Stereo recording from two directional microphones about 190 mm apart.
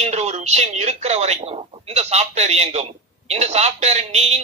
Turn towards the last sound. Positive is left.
turn(degrees=-35)  # may be behind; listen again after turning